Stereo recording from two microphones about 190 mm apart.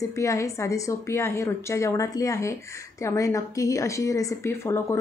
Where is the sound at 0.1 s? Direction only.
15° left (ahead or behind).